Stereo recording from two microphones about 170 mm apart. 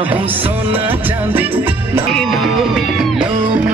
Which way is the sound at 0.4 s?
35° right (ahead or behind).